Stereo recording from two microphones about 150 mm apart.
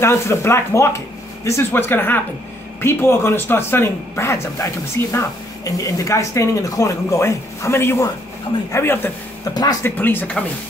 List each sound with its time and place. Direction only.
0.0 s speech: 15° left (ahead or behind)
9.4 s speech: 25° left (ahead or behind)
9.8 s speech: 15° left (ahead or behind)